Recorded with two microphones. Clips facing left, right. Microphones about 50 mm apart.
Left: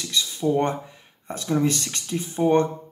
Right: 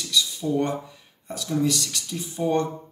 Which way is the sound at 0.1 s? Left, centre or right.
Left.